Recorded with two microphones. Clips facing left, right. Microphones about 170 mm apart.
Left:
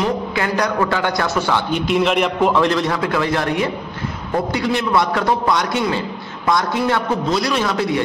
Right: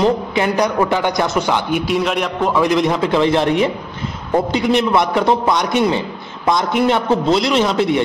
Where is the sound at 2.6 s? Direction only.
15° right (ahead or behind).